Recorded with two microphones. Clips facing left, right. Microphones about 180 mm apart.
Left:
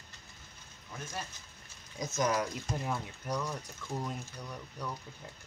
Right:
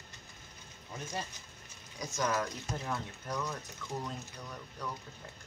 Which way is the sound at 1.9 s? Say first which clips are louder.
Left 2 dB; 20° left (ahead or behind).